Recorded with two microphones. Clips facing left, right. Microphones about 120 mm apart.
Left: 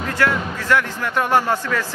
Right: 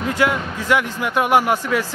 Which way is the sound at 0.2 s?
15° right (ahead or behind).